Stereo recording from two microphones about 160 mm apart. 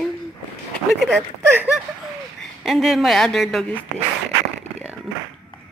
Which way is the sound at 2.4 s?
Centre (ahead or behind).